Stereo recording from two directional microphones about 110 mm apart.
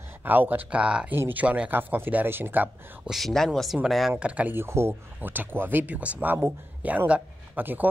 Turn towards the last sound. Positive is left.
turn(degrees=-15)  # may be behind; listen again after turning